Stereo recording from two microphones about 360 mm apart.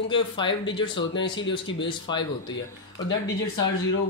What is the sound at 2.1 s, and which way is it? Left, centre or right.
Speech, centre.